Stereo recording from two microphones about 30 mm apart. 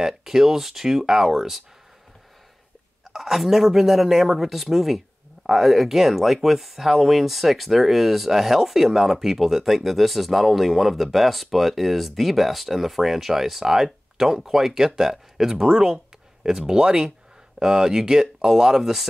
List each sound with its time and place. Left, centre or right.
0.0 s speech: centre
3.1 s speech: centre